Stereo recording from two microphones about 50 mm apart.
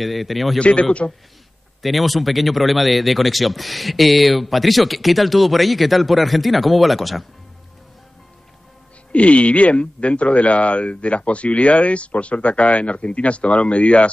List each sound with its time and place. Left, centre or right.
0.0 s speech: centre
0.6 s speech: left
1.8 s speech: centre
9.1 s speech: left